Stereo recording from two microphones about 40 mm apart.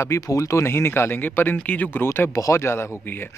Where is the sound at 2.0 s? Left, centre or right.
Left.